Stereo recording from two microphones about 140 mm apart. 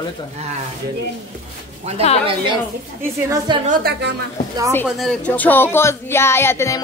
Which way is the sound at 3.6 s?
75° right (ahead or behind).